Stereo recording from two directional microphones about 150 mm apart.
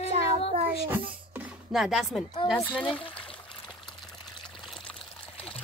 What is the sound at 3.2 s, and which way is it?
Trickle, 35° left (ahead or behind).